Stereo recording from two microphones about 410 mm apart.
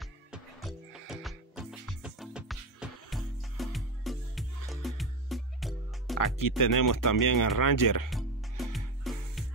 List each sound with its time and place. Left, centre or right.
0.0 s music: centre
6.1 s speech: left
8.1 s music: centre